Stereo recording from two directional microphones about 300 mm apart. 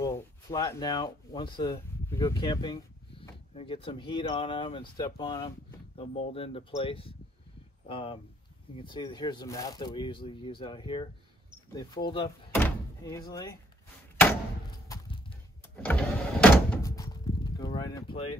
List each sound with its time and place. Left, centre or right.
0.0 s speech: centre
14.9 s a sound: centre
15.8 s door: centre